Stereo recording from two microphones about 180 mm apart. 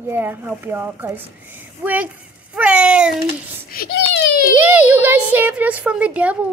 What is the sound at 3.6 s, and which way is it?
Speech, 55° left (ahead or behind).